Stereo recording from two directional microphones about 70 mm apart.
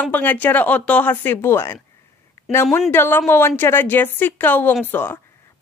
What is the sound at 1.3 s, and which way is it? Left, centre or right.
Speech, left.